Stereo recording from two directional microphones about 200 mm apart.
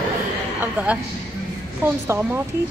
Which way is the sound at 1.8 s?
10° right (ahead or behind).